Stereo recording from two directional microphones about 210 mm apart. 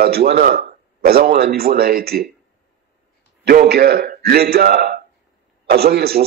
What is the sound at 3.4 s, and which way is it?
Speech, 45° right (ahead or behind).